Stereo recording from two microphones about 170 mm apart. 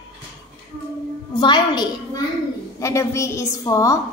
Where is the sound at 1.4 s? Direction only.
25° left (ahead or behind).